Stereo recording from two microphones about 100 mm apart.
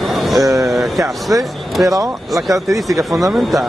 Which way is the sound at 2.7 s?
Centre (ahead or behind).